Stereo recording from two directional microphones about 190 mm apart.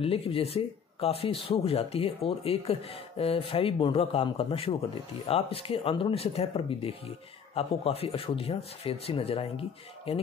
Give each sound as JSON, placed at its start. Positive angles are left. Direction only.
{"t": 0.0, "sound": "speech", "side_deg": 30}